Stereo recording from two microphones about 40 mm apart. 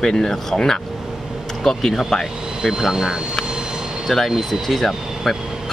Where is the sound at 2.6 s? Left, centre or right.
Centre.